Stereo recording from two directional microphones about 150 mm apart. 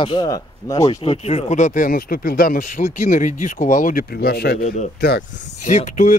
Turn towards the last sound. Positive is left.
turn(degrees=60)  # may be behind; listen again after turning